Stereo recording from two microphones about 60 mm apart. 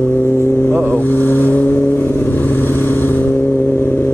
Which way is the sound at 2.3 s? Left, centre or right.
Left.